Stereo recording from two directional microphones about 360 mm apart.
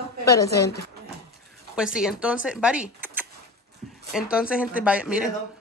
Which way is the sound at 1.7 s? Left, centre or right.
Centre.